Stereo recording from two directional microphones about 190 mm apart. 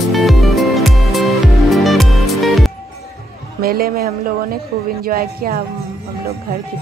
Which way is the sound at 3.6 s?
50° right (ahead or behind).